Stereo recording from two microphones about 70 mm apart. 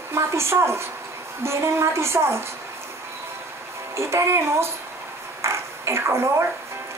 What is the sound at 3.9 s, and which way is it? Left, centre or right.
Speech, right.